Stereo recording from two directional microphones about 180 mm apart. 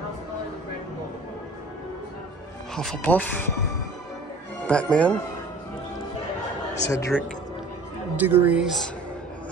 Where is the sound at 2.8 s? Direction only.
5° left (ahead or behind).